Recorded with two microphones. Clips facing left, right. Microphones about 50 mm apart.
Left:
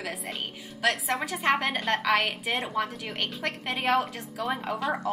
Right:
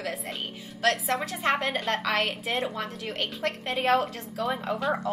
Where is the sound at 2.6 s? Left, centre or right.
Centre.